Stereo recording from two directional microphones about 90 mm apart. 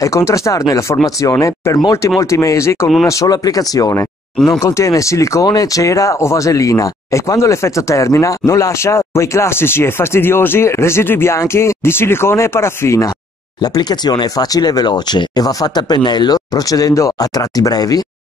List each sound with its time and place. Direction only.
0.0 s speech: 35° left (ahead or behind)
13.6 s speech: 50° left (ahead or behind)